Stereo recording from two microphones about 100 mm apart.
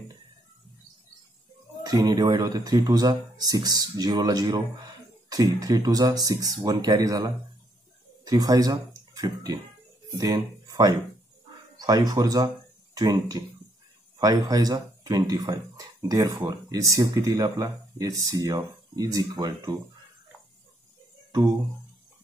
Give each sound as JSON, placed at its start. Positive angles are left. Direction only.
{"t": 2.0, "sound": "speech", "side_deg": -40}